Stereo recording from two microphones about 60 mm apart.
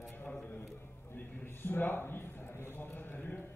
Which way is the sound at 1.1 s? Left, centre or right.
Left.